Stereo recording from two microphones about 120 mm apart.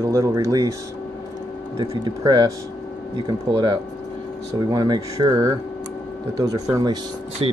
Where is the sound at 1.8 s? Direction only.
35° right (ahead or behind).